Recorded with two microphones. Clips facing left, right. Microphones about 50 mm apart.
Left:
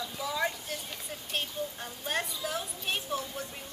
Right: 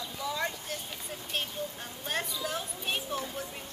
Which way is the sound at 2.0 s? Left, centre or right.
Centre.